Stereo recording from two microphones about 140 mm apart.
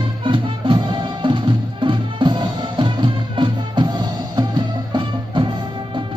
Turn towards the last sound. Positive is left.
turn(degrees=-35)  # may be behind; listen again after turning